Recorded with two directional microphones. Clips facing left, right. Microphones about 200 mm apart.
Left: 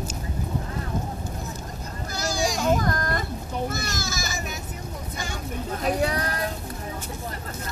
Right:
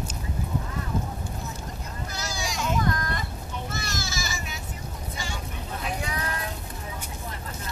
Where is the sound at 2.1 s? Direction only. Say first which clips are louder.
Left 8 dB; 40° left (ahead or behind).